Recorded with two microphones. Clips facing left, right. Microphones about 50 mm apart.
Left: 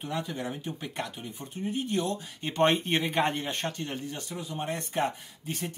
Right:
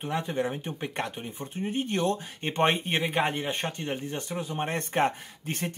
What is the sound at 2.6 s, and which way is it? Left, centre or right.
Speech, centre.